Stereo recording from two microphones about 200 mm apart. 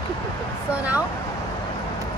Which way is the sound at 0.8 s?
5° right (ahead or behind).